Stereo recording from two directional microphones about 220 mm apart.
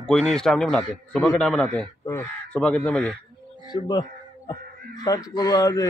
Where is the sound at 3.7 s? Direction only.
20° left (ahead or behind).